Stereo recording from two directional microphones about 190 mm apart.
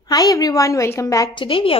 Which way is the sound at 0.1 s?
20° left (ahead or behind).